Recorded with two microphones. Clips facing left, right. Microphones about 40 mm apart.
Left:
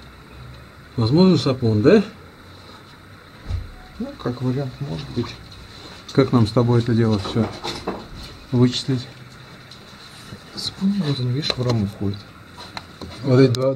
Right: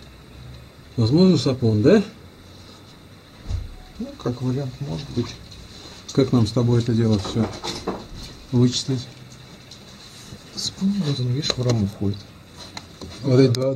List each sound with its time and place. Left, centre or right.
0.9 s speech: centre
4.0 s speech: centre
10.5 s a sound: centre